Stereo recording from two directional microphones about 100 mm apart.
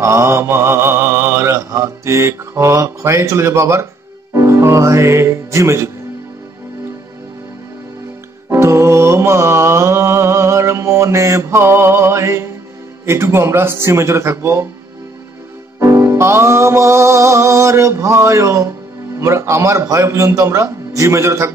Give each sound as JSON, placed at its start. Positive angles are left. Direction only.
{"t": 0.0, "sound": "mantra", "side_deg": -25}
{"t": 4.3, "sound": "speech", "side_deg": -30}
{"t": 8.5, "sound": "music", "side_deg": -25}
{"t": 13.0, "sound": "mantra", "side_deg": -25}
{"t": 15.8, "sound": "music", "side_deg": -25}
{"t": 19.1, "sound": "mantra", "side_deg": -30}